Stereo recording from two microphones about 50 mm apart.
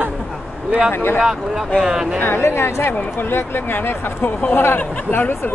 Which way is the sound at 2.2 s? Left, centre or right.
Left.